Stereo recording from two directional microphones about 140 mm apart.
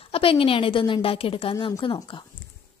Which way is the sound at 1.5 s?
30° left (ahead or behind).